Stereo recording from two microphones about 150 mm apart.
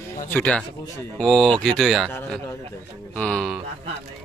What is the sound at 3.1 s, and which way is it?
Speech, 5° left (ahead or behind).